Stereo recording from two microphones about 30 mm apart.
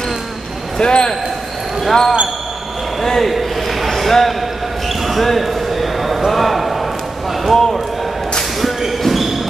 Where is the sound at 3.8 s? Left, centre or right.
Centre.